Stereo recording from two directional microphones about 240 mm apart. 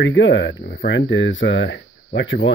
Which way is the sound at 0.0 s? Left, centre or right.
Left.